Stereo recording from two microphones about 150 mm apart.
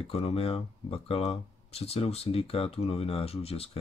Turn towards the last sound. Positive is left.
turn(degrees=40)  # may be behind; listen again after turning